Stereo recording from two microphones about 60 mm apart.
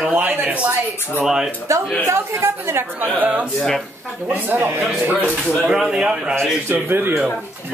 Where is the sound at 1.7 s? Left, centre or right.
Right.